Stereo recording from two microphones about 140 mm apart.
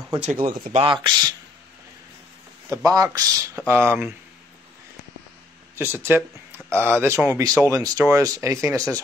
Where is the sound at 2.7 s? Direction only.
25° right (ahead or behind).